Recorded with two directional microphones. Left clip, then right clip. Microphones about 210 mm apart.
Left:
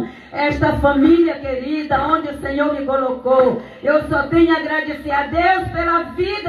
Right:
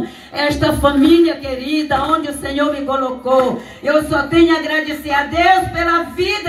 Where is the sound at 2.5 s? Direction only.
15° right (ahead or behind).